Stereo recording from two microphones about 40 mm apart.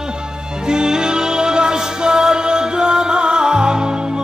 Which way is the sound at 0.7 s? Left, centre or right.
Centre.